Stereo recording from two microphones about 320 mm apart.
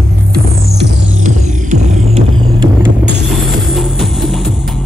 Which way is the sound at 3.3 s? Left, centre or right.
Centre.